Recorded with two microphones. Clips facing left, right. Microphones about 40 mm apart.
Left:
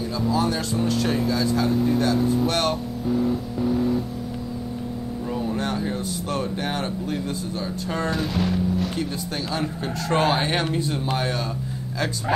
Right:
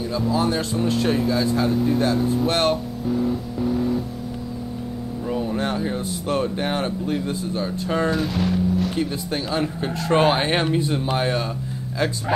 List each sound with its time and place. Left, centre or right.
0.2 s speech: centre
2.4 s speech: centre
3.1 s vehicle: centre
5.3 s speech: centre
8.1 s speech: centre
9.5 s speech: centre